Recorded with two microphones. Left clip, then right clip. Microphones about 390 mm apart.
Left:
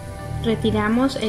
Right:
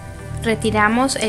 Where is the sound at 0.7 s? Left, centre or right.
Right.